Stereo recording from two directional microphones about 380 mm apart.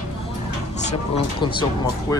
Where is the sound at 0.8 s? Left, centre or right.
Centre.